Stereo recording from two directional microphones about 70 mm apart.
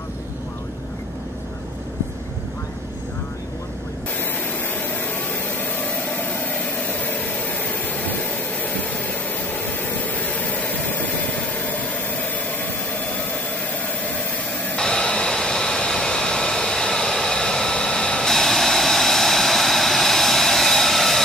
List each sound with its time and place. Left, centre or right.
4.7 s a sound: left
12.9 s jet engine: centre
14.8 s vehicle: centre